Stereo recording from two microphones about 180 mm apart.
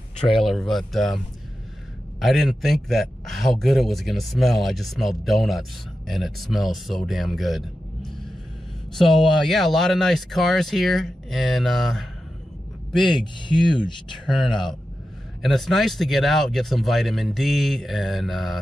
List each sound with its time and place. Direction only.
0.4 s a man's voice: centre (ahead or behind)
8.9 s a man's voice: centre (ahead or behind)
13.1 s speech: 25° left (ahead or behind)
14.2 s a man's voice: centre (ahead or behind)